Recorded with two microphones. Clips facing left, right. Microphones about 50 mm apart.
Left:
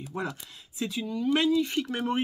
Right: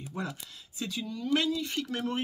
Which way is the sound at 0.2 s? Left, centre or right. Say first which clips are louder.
Left 3 dB; left.